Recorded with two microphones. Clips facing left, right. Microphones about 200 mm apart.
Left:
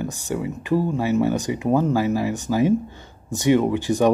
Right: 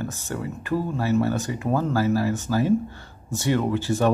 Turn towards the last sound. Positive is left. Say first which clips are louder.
# left 3 dB
turn(degrees=15)  # may be behind; listen again after turning